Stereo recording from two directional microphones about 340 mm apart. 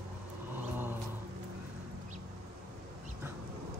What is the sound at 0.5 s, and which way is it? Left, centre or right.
Vehicle, centre.